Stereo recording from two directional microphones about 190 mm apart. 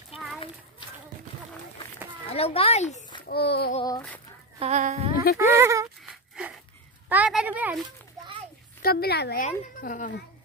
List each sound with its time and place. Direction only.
0.1 s children playing: centre (ahead or behind)
2.2 s a child's voice: 30° left (ahead or behind)
3.3 s a woman's voice: 55° left (ahead or behind)
4.6 s a sound: 35° right (ahead or behind)
5.4 s a woman's voice: 15° right (ahead or behind)
6.0 s a sound: 5° right (ahead or behind)
7.1 s a woman's voice: 5° right (ahead or behind)
8.8 s a woman's voice: 55° left (ahead or behind)
9.4 s speech: 45° left (ahead or behind)